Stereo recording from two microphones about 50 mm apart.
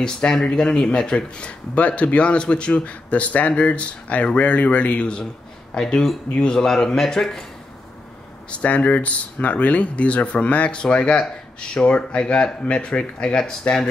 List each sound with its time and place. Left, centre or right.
0.0 s speech: centre
1.8 s speech: left
6.6 s speech: centre
8.5 s speech: left